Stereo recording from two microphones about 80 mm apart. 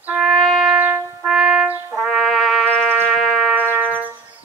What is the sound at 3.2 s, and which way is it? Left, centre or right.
Music, centre.